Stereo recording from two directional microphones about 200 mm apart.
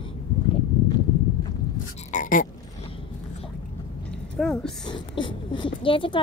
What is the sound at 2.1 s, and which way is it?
Frog, 40° left (ahead or behind).